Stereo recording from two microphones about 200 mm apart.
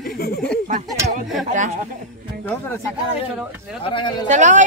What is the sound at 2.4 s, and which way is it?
Speech, 10° left (ahead or behind).